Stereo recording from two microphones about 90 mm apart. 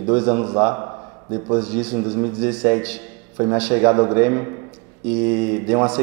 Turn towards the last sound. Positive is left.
turn(degrees=-15)  # may be behind; listen again after turning